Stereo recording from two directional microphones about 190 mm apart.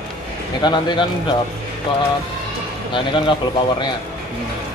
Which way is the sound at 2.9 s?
25° left (ahead or behind).